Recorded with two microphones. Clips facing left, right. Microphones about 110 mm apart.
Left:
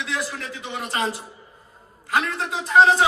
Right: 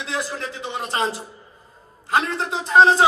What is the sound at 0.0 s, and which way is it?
A man's voice, 30° right (ahead or behind).